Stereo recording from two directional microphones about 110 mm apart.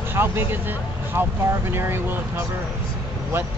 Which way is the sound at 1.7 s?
20° right (ahead or behind).